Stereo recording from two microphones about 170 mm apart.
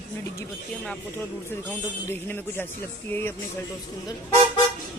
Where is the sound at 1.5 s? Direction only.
15° left (ahead or behind).